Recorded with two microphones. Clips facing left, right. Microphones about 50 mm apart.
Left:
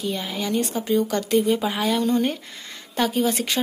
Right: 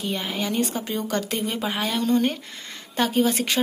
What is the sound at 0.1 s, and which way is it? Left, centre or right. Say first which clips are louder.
Speech: even; centre.